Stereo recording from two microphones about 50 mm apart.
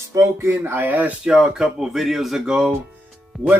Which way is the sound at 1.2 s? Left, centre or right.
Centre.